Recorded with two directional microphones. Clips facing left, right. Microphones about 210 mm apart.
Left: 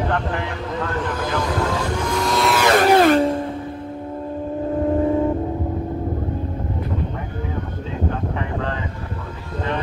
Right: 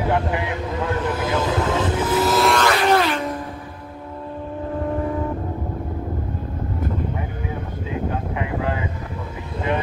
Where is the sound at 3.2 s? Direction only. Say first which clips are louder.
Left 7 dB; 30° left (ahead or behind).